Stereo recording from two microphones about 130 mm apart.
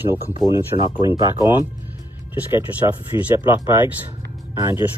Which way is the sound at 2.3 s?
15° right (ahead or behind).